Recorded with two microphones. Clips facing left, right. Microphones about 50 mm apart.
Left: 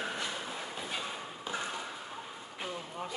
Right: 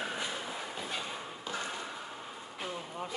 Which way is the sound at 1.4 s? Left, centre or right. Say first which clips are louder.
Left 1 dB; centre.